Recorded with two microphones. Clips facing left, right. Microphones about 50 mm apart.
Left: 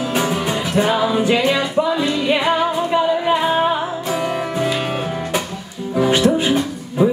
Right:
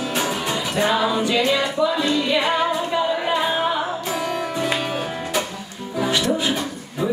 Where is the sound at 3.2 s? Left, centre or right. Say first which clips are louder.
Left 4 dB; centre.